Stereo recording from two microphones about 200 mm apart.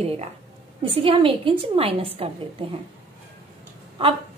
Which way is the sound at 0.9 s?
25° right (ahead or behind).